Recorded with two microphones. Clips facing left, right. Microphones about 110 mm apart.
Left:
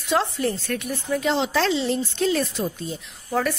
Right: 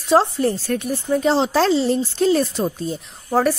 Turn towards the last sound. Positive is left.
turn(degrees=-40)  # may be behind; listen again after turning